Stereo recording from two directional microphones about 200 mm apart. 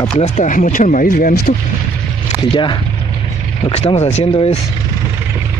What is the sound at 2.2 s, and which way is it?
Speech, 25° left (ahead or behind).